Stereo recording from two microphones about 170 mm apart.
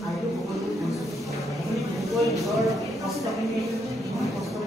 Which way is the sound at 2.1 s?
Centre (ahead or behind).